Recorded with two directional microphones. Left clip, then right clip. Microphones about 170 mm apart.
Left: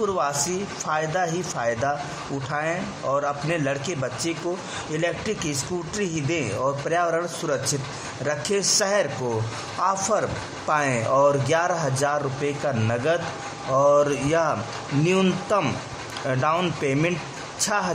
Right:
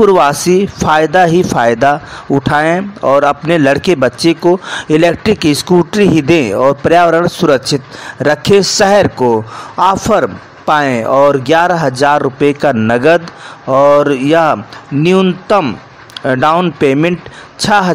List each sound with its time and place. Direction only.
0.0 s speech: 45° right (ahead or behind)